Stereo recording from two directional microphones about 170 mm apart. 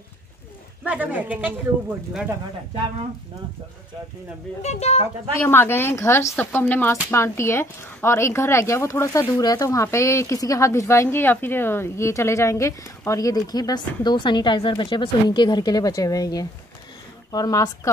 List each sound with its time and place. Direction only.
0.8 s speech: 10° right (ahead or behind)
4.6 s speech: 40° left (ahead or behind)
5.4 s speech: 15° left (ahead or behind)